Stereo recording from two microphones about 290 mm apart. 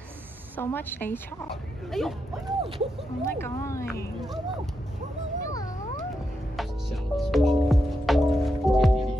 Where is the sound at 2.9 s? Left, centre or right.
Centre.